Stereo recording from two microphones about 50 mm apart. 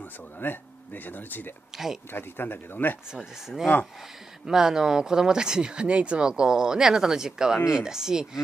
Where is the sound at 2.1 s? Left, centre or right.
Left.